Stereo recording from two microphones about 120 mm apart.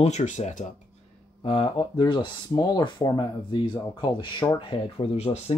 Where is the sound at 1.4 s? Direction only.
50° left (ahead or behind).